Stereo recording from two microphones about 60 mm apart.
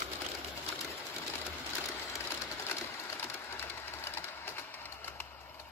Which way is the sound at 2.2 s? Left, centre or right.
Left.